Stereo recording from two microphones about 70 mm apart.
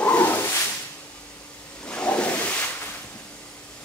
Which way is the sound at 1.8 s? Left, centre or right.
Centre.